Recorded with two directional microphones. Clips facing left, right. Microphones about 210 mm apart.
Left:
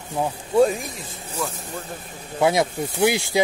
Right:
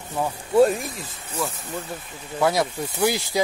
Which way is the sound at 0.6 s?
Centre (ahead or behind).